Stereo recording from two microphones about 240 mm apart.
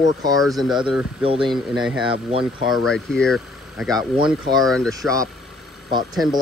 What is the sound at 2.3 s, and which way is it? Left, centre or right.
Speech, right.